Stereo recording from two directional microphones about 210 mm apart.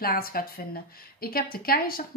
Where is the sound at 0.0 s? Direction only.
45° left (ahead or behind).